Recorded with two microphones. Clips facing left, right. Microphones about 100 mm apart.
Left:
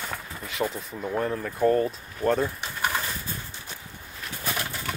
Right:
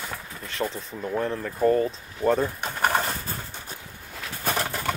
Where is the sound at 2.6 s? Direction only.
50° right (ahead or behind).